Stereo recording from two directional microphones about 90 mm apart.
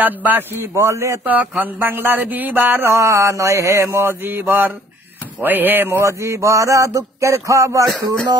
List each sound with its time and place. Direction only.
0.0 s mantra: 20° right (ahead or behind)
1.2 s mantra: 15° right (ahead or behind)
6.0 s a sound: 35° right (ahead or behind)